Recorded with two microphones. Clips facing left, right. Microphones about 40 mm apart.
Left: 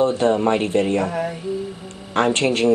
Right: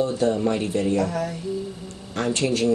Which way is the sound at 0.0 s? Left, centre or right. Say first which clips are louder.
Left 4 dB; left.